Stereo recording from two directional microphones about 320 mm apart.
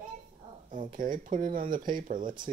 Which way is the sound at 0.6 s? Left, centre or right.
Right.